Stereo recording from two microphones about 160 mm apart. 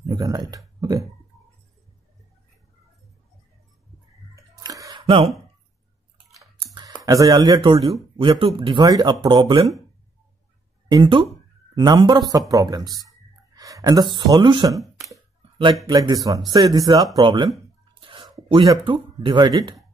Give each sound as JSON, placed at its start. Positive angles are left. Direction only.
{"t": 0.0, "sound": "a sound", "side_deg": -25}
{"t": 4.4, "sound": "squish", "side_deg": -20}
{"t": 6.7, "sound": "computer keyboard", "side_deg": -30}
{"t": 7.1, "sound": "speech", "side_deg": -20}
{"t": 10.9, "sound": "speech", "side_deg": -30}
{"t": 13.6, "sound": "a sound", "side_deg": -20}
{"t": 14.1, "sound": "speech", "side_deg": -30}
{"t": 15.9, "sound": "speech", "side_deg": -25}
{"t": 18.0, "sound": "a sound", "side_deg": -30}
{"t": 18.5, "sound": "speech", "side_deg": -30}